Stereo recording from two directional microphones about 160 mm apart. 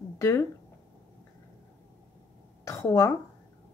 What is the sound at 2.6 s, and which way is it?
Speech, 15° left (ahead or behind).